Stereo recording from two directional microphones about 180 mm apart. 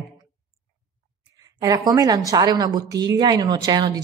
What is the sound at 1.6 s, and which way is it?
A woman's voice, 20° right (ahead or behind).